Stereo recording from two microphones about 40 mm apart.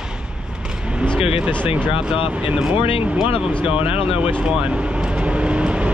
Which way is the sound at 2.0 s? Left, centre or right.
Right.